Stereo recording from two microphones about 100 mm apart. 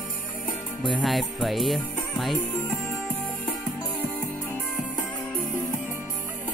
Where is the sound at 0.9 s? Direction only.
Centre (ahead or behind).